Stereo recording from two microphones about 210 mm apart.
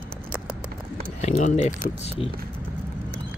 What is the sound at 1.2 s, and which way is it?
Speech, 35° left (ahead or behind).